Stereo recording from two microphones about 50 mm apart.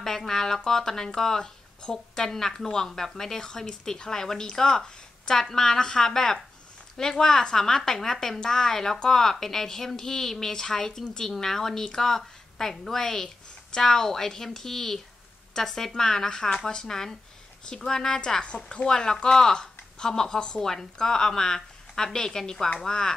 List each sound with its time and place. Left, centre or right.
0.0 s speech: centre